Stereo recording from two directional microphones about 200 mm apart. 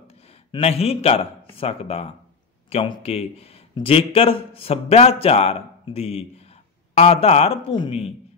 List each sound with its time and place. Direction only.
0.5 s speech: 30° left (ahead or behind)